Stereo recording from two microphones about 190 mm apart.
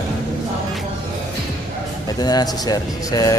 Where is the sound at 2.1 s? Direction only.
20° left (ahead or behind).